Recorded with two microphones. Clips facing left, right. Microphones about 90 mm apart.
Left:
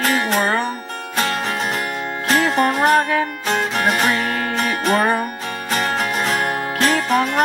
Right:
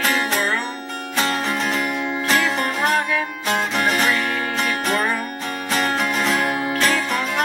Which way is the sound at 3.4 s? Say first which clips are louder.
Right 1 dB; centre (ahead or behind).